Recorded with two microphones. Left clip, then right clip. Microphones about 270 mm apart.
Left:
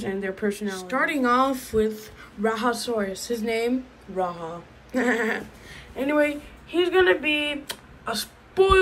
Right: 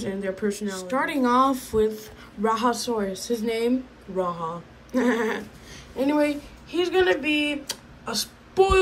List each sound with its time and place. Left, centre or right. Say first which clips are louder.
0.0 s speech: even; centre